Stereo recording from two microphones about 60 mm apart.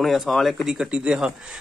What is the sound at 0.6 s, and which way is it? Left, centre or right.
Speech, centre.